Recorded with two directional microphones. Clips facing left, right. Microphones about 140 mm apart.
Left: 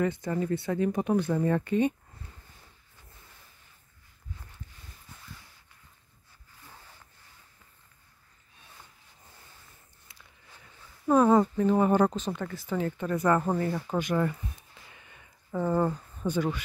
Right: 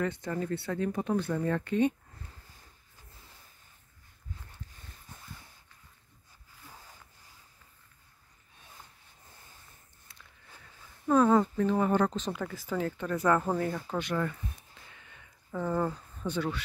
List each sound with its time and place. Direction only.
0.0 s speech: 10° left (ahead or behind)
11.1 s speech: 15° left (ahead or behind)
12.3 s speech: 5° right (ahead or behind); by 14.3 s 15° left (ahead or behind)
15.5 s speech: 20° left (ahead or behind)